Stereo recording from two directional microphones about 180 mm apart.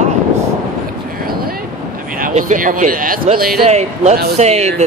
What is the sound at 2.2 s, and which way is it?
Speech, 45° right (ahead or behind).